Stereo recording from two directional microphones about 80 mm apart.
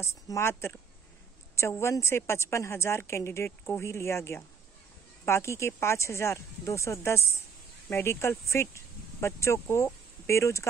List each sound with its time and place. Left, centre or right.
0.0 s a woman's voice: left